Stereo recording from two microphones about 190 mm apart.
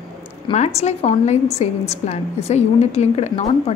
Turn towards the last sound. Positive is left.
turn(degrees=35)  # may be behind; listen again after turning